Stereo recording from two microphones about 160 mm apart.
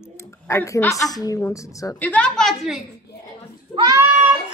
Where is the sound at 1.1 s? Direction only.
20° left (ahead or behind).